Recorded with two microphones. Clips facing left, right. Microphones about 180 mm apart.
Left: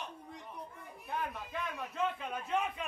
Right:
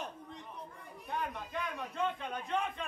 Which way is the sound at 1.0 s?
5° left (ahead or behind).